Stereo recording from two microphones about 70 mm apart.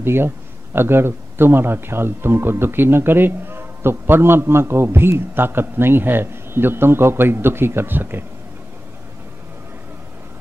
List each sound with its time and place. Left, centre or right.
0.0 s speech: right